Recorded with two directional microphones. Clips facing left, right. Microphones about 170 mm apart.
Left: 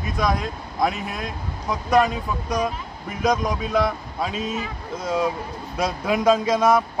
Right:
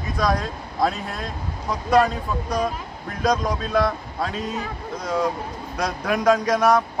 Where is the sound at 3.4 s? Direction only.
20° left (ahead or behind).